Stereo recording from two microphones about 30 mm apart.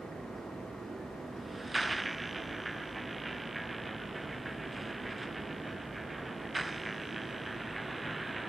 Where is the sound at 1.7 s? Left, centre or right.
Centre.